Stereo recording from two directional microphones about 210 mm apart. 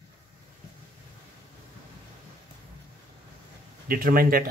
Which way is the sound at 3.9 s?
45° right (ahead or behind).